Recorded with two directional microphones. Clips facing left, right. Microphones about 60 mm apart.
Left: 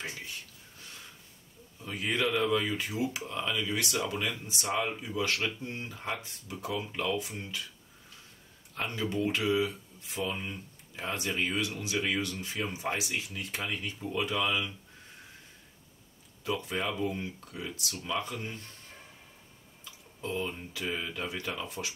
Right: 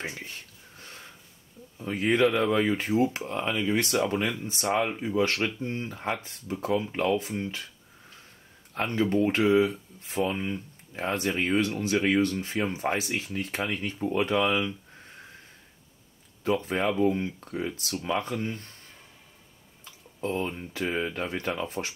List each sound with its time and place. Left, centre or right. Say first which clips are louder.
0.7 s a sound: right 4 dB; right
1.8 s a man's voice: right 8 dB; right
4.8 s speech: right 5 dB; right
5.1 s speech: right 6 dB; right
8.7 s speech: right 7 dB; right
10.3 s speech: right 7 dB; centre
11.0 s speech: right 5 dB; right
16.4 s speech: right 6 dB; right
17.5 s speech: right 7 dB; right
19.8 s a sound: right 7 dB; right
20.7 s speech: right 8 dB; right